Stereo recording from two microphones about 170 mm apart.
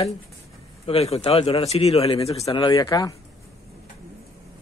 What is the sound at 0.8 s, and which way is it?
A man's voice, 35° left (ahead or behind).